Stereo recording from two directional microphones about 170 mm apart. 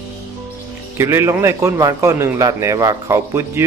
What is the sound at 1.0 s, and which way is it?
Speech, 15° right (ahead or behind).